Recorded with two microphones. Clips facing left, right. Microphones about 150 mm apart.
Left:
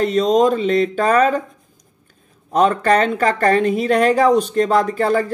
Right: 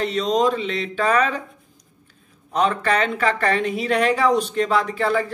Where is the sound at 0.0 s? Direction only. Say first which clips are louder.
Left 5 dB; 45° left (ahead or behind).